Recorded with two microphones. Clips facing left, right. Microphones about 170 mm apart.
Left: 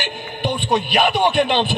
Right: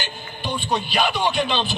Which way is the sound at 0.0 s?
60° left (ahead or behind).